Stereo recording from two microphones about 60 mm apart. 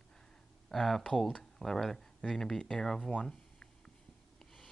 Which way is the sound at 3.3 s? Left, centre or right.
Centre.